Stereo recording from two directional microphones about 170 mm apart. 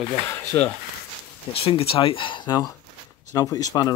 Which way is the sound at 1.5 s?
35° left (ahead or behind).